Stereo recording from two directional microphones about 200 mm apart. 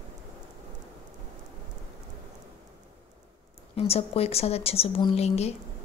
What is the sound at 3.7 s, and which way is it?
Speech, 30° left (ahead or behind).